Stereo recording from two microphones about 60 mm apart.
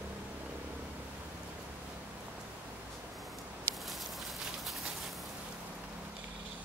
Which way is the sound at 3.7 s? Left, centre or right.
Left.